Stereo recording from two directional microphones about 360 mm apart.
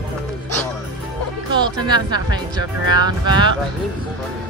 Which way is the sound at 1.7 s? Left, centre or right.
Centre.